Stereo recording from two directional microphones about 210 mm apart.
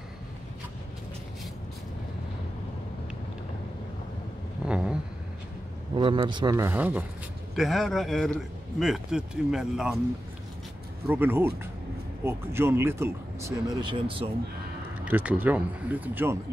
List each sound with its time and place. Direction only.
4.6 s a sound: 5° right (ahead or behind)
5.9 s a man's voice: 25° right (ahead or behind); by 9.9 s 5° right (ahead or behind)
11.1 s speech: 10° right (ahead or behind); by 14.3 s 25° right (ahead or behind)
15.0 s speech: 10° right (ahead or behind)